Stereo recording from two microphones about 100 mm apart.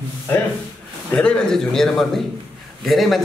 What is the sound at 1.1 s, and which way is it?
A man's voice, 10° left (ahead or behind).